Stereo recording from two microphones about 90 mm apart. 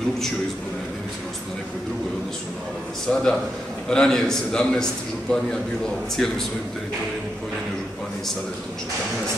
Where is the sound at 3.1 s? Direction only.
10° left (ahead or behind).